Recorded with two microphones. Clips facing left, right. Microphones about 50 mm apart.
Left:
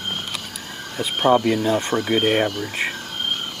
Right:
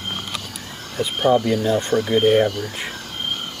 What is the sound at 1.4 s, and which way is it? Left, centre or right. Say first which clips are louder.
Speech: even; left.